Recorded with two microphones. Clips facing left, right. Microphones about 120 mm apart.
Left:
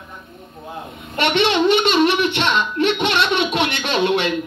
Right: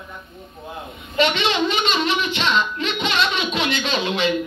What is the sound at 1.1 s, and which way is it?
Speech, 65° left (ahead or behind).